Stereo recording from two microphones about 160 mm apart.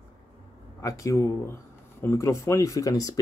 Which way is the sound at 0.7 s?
20° left (ahead or behind).